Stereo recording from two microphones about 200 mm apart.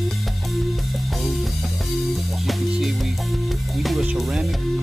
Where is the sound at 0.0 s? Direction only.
Centre (ahead or behind).